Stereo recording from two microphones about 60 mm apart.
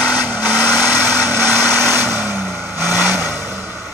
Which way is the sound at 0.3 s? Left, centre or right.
Right.